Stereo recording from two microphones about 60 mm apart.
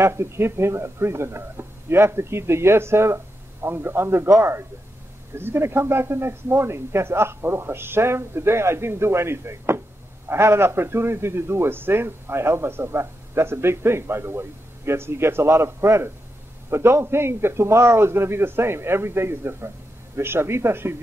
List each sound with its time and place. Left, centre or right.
0.0 s speech: right